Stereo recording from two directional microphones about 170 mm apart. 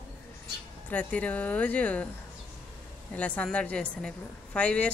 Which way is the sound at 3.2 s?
10° left (ahead or behind).